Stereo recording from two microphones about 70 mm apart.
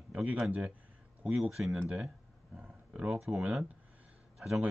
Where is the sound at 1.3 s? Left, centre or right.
Centre.